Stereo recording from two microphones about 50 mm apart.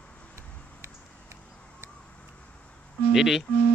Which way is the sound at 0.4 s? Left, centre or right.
Right.